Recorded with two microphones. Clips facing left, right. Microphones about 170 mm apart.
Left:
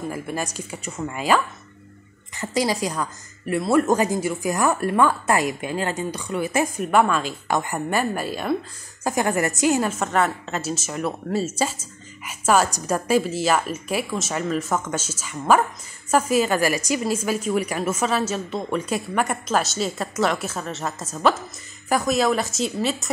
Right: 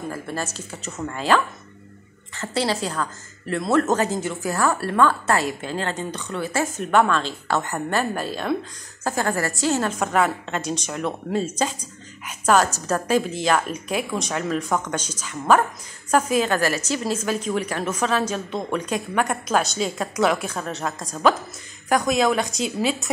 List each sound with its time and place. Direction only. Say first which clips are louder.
0.1 s a woman's voice: left 1 dB; 15° left (ahead or behind)
9.9 s a woman's voice: right 1 dB; centre (ahead or behind)